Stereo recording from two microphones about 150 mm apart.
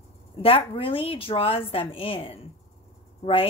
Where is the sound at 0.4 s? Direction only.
40° left (ahead or behind).